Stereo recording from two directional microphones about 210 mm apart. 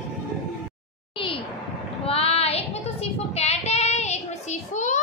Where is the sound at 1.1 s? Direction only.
25° left (ahead or behind).